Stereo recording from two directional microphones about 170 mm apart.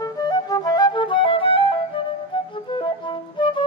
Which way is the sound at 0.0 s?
20° left (ahead or behind).